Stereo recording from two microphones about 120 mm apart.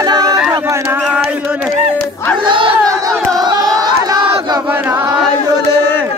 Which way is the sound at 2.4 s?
45° right (ahead or behind).